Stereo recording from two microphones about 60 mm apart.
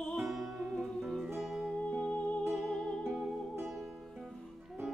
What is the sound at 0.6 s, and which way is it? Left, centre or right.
Music, right.